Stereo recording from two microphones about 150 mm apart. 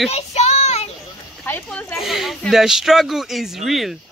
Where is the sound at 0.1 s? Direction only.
45° left (ahead or behind).